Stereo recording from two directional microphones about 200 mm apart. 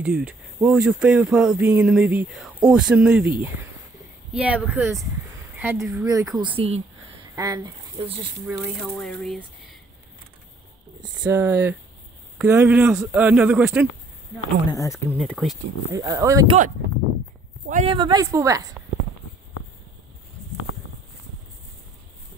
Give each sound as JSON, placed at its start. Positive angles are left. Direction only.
{"t": 0.0, "sound": "speech", "side_deg": -5}
{"t": 6.0, "sound": "speech", "side_deg": -15}
{"t": 6.4, "sound": "speech", "side_deg": -30}
{"t": 7.3, "sound": "speech", "side_deg": -15}
{"t": 8.5, "sound": "speech", "side_deg": -5}
{"t": 11.2, "sound": "speech", "side_deg": -10}
{"t": 14.7, "sound": "speech", "side_deg": 15}
{"t": 15.1, "sound": "speech", "side_deg": 0}
{"t": 15.9, "sound": "speech", "side_deg": -15}
{"t": 17.6, "sound": "speech", "side_deg": -40}
{"t": 17.9, "sound": "speech", "side_deg": -20}